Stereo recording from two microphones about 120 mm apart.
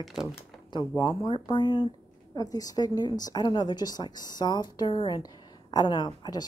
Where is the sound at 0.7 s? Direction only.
40° left (ahead or behind).